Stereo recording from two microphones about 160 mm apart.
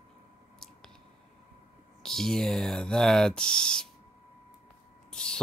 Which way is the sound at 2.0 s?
5° left (ahead or behind).